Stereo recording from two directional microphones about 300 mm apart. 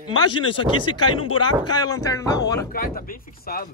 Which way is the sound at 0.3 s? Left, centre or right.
Centre.